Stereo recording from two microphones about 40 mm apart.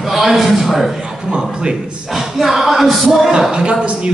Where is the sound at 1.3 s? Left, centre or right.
Right.